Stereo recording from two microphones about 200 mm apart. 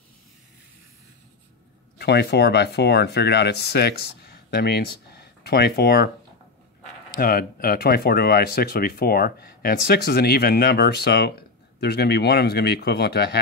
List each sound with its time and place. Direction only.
2.0 s speech: 55° left (ahead or behind)
7.2 s speech: 50° left (ahead or behind)